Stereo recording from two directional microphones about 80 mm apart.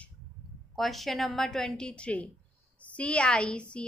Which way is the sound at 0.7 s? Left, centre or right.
Centre.